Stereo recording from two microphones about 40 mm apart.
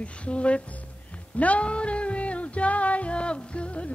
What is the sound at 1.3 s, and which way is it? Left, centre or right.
Music, left.